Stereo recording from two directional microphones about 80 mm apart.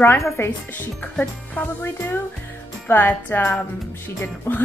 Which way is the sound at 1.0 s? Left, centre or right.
Centre.